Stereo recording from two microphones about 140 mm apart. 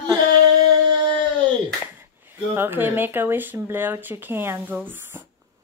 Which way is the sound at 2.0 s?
15° right (ahead or behind).